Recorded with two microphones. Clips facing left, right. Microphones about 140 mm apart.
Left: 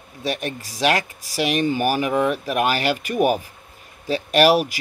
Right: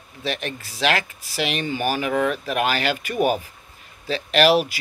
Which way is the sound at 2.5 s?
40° left (ahead or behind).